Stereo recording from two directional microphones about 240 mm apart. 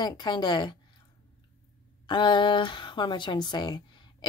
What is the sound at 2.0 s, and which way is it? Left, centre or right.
Speech, centre.